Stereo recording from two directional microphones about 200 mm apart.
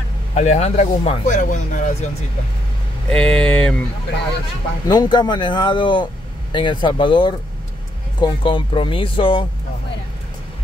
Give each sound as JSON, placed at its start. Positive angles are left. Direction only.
{"t": 0.3, "sound": "speech", "side_deg": 35}
{"t": 3.1, "sound": "speech", "side_deg": 5}
{"t": 4.8, "sound": "speech", "side_deg": 20}